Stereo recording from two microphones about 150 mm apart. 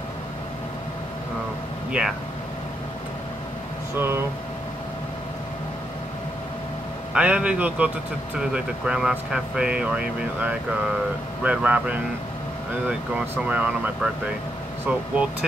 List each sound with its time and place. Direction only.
1.9 s speech: 5° right (ahead or behind)
3.9 s speech: 15° right (ahead or behind)
7.2 s speech: 5° right (ahead or behind)
14.9 s speech: 10° right (ahead or behind)